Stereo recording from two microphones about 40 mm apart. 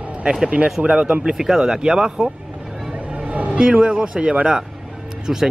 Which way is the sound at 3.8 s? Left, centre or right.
Right.